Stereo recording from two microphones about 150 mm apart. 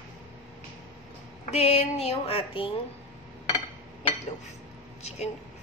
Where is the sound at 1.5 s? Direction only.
45° left (ahead or behind).